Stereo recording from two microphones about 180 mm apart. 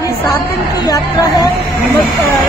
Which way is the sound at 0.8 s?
20° left (ahead or behind).